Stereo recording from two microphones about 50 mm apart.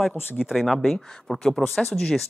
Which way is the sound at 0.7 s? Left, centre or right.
Centre.